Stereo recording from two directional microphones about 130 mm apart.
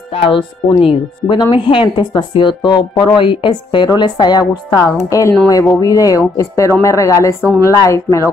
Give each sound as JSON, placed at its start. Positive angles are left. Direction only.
{"t": 0.1, "sound": "speech", "side_deg": 40}